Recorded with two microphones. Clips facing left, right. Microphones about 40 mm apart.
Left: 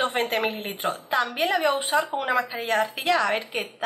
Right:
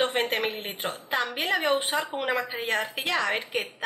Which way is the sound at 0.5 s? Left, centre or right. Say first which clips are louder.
Left 4 dB; right.